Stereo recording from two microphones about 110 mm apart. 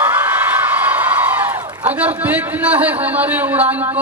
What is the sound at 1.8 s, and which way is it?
A man's voice, 15° right (ahead or behind).